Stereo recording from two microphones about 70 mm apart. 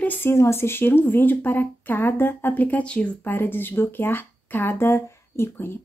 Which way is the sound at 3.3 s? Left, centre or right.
Left.